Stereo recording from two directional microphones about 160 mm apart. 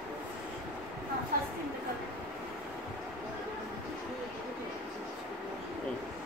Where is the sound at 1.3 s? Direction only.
65° right (ahead or behind).